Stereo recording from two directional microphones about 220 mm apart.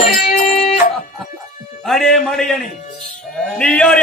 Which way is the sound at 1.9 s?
Centre (ahead or behind).